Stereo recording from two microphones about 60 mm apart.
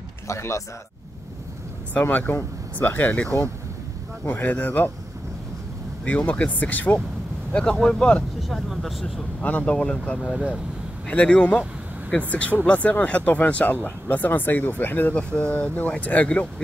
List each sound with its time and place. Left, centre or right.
0.3 s a man's voice: left
2.0 s speech: left
6.0 s speech: left
7.8 s speech: centre
8.4 s speech: centre
9.4 s speech: left
15.1 s speech: centre